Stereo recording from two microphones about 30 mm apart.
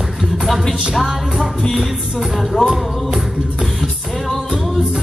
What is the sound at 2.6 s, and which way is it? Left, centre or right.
Music, centre.